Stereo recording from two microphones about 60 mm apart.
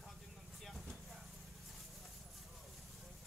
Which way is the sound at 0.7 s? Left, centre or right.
Centre.